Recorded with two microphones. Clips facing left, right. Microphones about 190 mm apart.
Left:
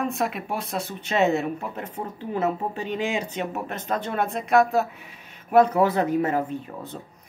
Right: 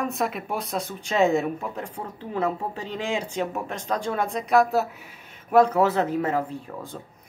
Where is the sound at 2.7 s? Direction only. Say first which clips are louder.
Left 4 dB; 65° left (ahead or behind).